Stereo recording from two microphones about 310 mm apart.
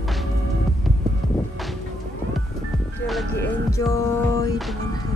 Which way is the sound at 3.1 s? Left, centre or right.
Centre.